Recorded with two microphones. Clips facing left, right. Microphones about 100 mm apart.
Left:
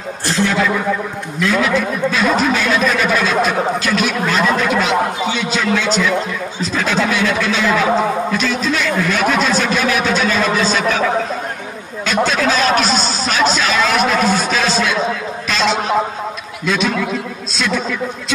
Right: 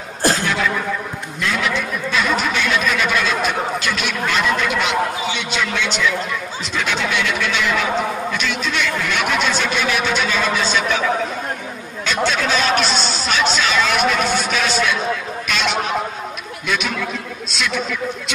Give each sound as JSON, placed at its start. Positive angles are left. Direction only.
{"t": 0.5, "sound": "a sound", "side_deg": 40}
{"t": 1.5, "sound": "speech", "side_deg": 35}
{"t": 12.1, "sound": "speech", "side_deg": 40}